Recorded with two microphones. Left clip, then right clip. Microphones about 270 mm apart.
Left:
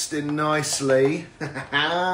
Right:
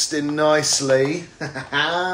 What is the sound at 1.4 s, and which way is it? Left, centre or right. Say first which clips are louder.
Speech: right 2 dB; centre.